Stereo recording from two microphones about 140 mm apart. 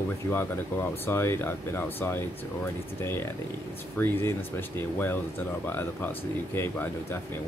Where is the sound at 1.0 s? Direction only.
15° left (ahead or behind).